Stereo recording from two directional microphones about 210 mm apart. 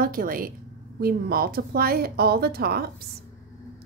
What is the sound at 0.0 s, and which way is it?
A woman's voice, 40° right (ahead or behind).